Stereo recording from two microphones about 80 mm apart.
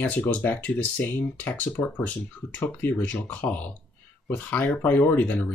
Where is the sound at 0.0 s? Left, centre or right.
Left.